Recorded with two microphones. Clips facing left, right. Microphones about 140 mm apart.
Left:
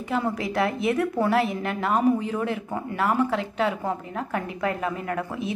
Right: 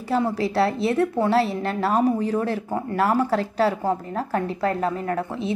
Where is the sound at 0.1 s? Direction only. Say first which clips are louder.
Right 4 dB; 30° right (ahead or behind).